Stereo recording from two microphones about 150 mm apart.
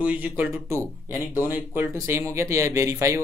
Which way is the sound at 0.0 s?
10° right (ahead or behind).